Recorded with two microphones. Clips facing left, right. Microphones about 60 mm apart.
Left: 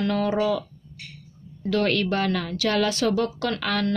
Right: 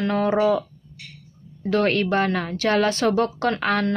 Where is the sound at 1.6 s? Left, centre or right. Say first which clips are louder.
Right 2 dB; right.